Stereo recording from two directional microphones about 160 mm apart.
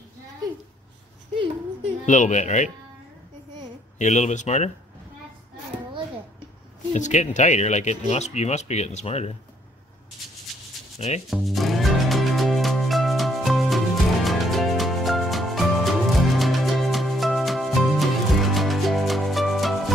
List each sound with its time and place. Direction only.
2.0 s speech: 50° left (ahead or behind)
4.0 s speech: 45° left (ahead or behind)
6.9 s speech: 45° left (ahead or behind)
10.5 s a sound: centre (ahead or behind)
11.0 s speech: 45° left (ahead or behind)
11.2 s music: centre (ahead or behind)